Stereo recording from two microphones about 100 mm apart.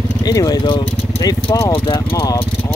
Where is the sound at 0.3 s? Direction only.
40° left (ahead or behind).